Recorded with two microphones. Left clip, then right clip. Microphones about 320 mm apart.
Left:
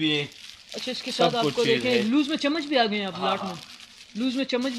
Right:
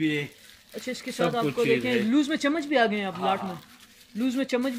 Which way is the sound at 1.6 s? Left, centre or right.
Centre.